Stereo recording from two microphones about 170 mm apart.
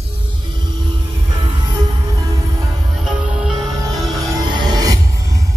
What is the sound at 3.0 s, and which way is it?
Music, 5° right (ahead or behind).